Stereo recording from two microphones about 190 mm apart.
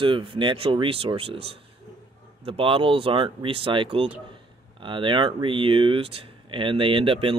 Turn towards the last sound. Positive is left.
turn(degrees=-30)  # may be behind; listen again after turning